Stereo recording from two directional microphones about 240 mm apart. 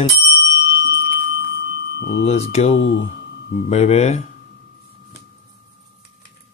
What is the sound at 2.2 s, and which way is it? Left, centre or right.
Speech, left.